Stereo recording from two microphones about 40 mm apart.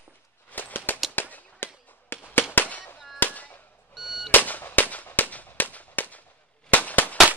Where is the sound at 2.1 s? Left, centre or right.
Left.